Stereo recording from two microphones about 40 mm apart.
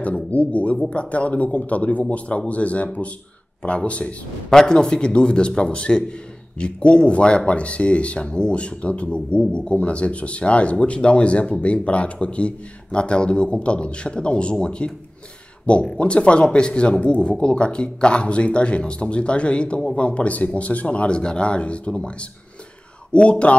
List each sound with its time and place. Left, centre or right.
0.3 s a man's voice: left
4.5 s a man's voice: centre